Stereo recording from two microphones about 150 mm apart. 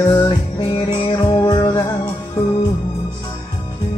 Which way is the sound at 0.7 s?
35° left (ahead or behind).